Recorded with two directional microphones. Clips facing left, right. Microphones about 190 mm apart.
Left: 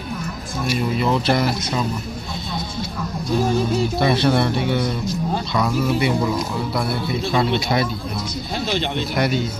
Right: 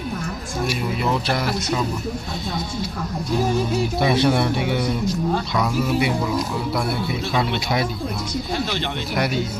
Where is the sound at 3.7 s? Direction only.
10° right (ahead or behind).